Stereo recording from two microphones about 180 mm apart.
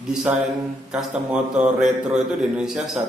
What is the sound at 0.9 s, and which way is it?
A man's voice, 5° right (ahead or behind).